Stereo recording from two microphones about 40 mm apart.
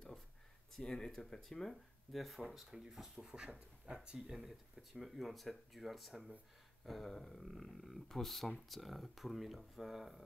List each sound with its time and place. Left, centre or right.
0.7 s speech: centre
3.4 s speech: right
4.5 s speech: centre